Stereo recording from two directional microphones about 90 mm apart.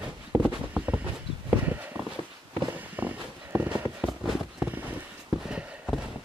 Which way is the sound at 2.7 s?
20° right (ahead or behind).